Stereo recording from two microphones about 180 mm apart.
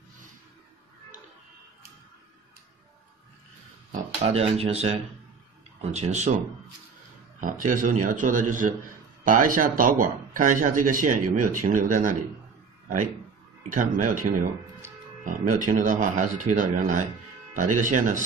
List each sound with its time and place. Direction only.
4.2 s speech: 35° right (ahead or behind)
7.3 s speech: 45° right (ahead or behind)
13.7 s speech: 45° right (ahead or behind)